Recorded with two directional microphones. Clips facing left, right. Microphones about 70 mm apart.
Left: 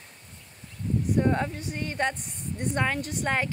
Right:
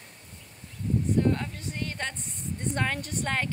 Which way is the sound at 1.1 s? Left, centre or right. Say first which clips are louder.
Left 3 dB; left.